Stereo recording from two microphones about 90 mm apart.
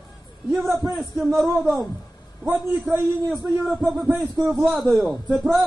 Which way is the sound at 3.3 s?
5° right (ahead or behind).